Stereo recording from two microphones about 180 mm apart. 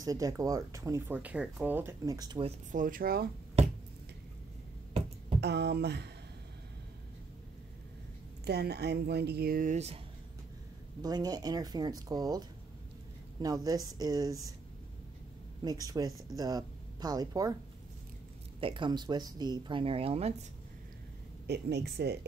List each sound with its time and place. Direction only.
0.0 s speech: 20° right (ahead or behind)
2.7 s speech: 50° right (ahead or behind)
5.4 s speech: 70° right (ahead or behind)
8.5 s speech: 65° right (ahead or behind); by 9.9 s 40° right (ahead or behind)
11.0 s speech: 20° right (ahead or behind)
15.6 s speech: 20° right (ahead or behind)
18.6 s speech: 30° right (ahead or behind)
21.5 s speech: 70° right (ahead or behind)